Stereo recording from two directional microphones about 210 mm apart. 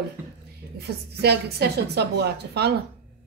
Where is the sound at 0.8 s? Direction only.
50° right (ahead or behind).